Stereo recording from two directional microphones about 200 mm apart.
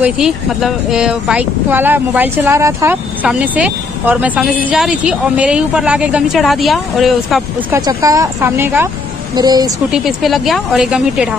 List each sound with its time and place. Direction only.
0.0 s speech: centre (ahead or behind)
7.7 s speech: 15° right (ahead or behind)
9.8 s speech: centre (ahead or behind)